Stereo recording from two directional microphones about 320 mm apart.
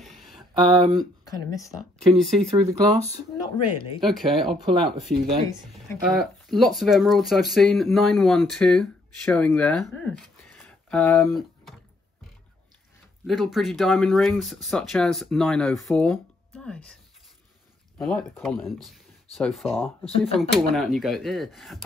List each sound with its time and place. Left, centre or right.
0.0 s a sound: centre
1.2 s speech: centre
2.3 s speech: centre
3.5 s speech: centre
4.0 s speech: centre
4.6 s speech: centre
5.0 s speech: centre
13.3 s speech: centre
17.9 s speech: centre